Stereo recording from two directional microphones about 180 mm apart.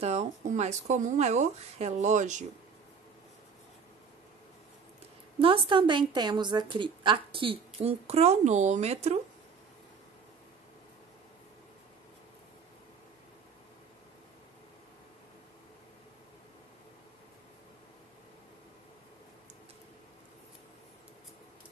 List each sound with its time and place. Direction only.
0.0 s speech: 40° right (ahead or behind)
5.4 s a woman's voice: 30° right (ahead or behind)